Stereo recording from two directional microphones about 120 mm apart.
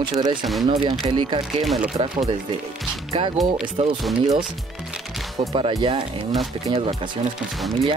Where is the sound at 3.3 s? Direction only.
5° right (ahead or behind).